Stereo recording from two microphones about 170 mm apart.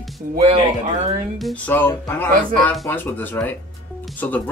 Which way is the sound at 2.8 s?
10° left (ahead or behind).